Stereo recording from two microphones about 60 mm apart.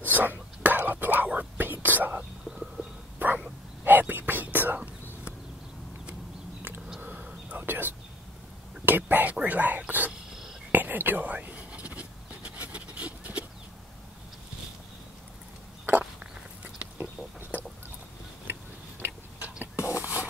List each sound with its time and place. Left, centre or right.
0.0 s whispering: right
3.2 s dog: right
3.8 s whispering: right
7.0 s whispering: right
16.6 s a sound: right
18.5 s tick-tock: right
20.0 s a sound: right